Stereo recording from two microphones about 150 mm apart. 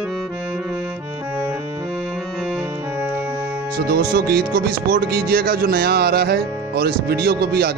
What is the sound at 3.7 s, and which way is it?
Speech, 90° right.